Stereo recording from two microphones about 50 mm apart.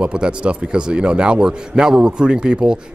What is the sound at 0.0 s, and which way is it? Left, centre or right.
A man's voice, centre.